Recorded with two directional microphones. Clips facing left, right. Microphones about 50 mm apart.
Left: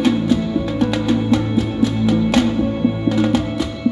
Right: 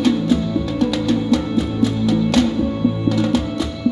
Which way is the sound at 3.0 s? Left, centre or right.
Left.